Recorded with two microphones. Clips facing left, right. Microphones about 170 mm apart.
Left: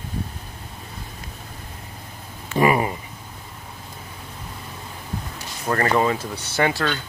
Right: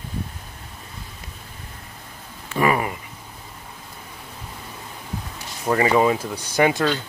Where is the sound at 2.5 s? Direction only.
20° left (ahead or behind).